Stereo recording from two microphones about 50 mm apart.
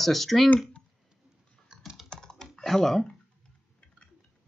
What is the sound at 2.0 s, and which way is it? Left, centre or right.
Typing, centre.